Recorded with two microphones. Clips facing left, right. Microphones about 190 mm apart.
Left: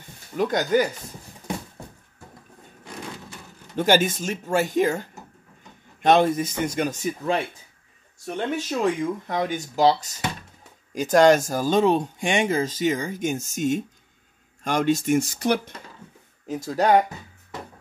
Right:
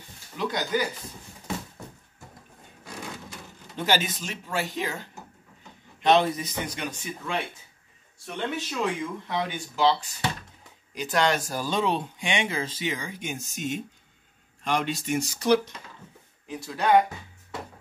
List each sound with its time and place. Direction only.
0.4 s speech: 45° left (ahead or behind)
3.7 s speech: 50° left (ahead or behind)
6.0 s speech: 50° left (ahead or behind)
16.4 s speech: 45° left (ahead or behind)